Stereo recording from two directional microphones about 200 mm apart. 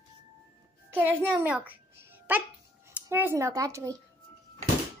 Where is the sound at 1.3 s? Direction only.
5° right (ahead or behind).